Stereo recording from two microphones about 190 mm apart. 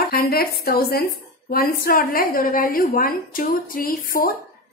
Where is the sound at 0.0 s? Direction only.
55° left (ahead or behind).